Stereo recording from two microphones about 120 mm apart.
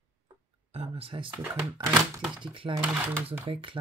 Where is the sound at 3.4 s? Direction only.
45° right (ahead or behind).